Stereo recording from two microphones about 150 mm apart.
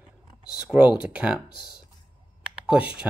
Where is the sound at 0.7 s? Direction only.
10° right (ahead or behind).